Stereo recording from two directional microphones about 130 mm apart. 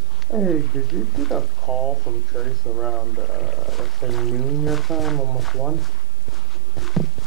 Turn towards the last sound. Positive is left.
turn(degrees=0)  # may be behind; listen again after turning